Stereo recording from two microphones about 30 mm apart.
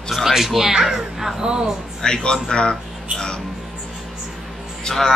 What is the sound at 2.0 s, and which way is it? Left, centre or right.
Speech, left.